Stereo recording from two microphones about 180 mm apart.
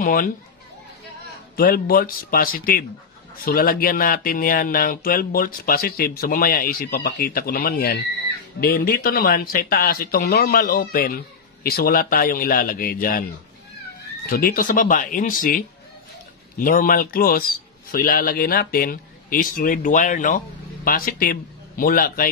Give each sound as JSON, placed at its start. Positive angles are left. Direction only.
{"t": 0.0, "sound": "speech", "side_deg": 50}
{"t": 1.6, "sound": "a man's voice", "side_deg": 55}
{"t": 14.3, "sound": "a man's voice", "side_deg": 55}